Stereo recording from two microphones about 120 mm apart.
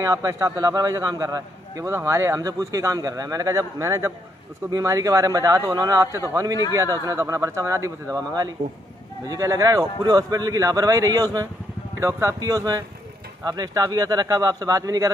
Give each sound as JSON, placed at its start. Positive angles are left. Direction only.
{"t": 0.0, "sound": "a man's voice", "side_deg": -25}